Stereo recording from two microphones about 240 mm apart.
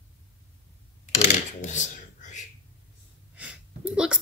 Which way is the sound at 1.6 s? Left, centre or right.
Left.